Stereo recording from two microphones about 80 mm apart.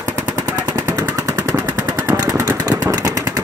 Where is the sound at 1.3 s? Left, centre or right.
Right.